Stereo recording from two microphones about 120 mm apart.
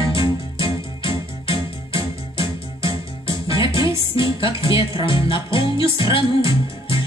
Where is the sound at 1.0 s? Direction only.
45° left (ahead or behind).